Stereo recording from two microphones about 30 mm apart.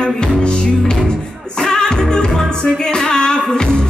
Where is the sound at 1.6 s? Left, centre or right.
Left.